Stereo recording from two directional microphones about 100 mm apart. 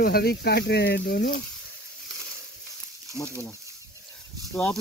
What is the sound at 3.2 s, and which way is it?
Speech, 30° right (ahead or behind).